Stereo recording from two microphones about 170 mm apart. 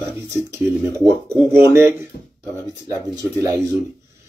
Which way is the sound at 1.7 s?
15° right (ahead or behind).